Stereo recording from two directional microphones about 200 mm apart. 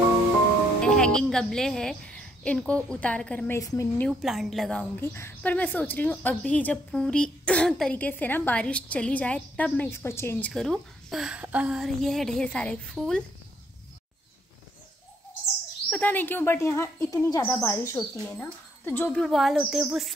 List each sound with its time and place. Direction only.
0.7 s a woman's voice: 5° left (ahead or behind)
4.1 s a woman's voice: centre (ahead or behind)
10.5 s a woman's voice: centre (ahead or behind)
15.9 s a woman's voice: 10° left (ahead or behind)
19.2 s a woman's voice: centre (ahead or behind)